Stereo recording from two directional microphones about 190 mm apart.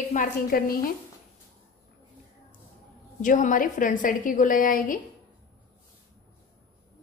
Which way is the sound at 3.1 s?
40° left (ahead or behind).